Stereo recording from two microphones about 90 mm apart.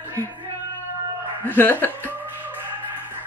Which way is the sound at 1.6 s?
20° left (ahead or behind).